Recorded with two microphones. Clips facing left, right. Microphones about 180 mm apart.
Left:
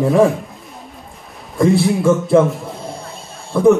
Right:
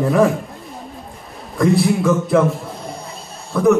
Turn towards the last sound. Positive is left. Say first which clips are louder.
# left 3 dB
turn(degrees=25)  # may be behind; listen again after turning